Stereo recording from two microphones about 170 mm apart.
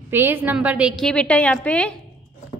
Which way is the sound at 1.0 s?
5° left (ahead or behind).